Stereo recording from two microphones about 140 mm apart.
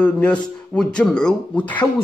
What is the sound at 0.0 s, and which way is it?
A man's voice, 10° left (ahead or behind).